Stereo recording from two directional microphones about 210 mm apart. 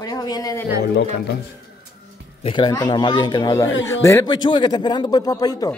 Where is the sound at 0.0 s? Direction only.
20° left (ahead or behind).